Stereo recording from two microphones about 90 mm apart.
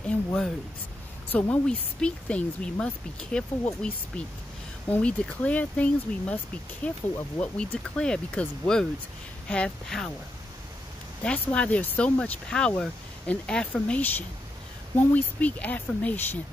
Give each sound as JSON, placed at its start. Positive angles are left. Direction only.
{"t": 0.0, "sound": "speech", "side_deg": 10}
{"t": 11.2, "sound": "speech", "side_deg": 15}